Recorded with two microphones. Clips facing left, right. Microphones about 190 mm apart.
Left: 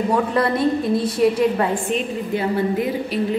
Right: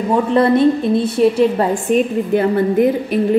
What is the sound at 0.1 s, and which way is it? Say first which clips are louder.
A woman's voice: right 9 dB; 25° right (ahead or behind).